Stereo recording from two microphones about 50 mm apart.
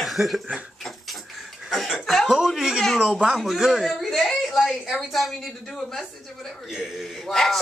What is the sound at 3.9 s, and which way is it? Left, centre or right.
A man's voice, centre.